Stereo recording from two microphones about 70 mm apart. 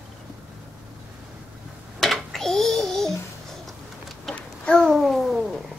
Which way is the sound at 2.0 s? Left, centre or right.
Centre.